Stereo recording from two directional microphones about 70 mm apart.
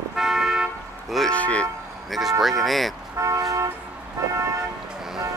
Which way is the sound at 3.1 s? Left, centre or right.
Right.